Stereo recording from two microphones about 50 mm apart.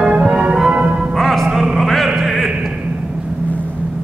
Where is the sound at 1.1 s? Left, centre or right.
Centre.